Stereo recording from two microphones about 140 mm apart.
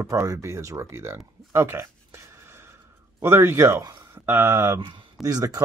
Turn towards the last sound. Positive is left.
turn(degrees=-25)  # may be behind; listen again after turning